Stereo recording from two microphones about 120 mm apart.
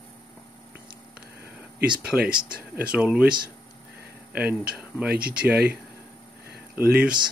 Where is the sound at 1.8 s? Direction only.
5° right (ahead or behind).